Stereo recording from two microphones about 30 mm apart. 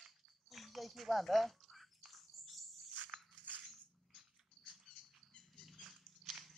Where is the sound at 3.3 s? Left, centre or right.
Right.